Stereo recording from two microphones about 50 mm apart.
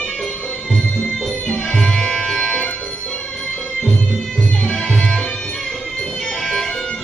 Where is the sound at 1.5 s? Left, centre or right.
Centre.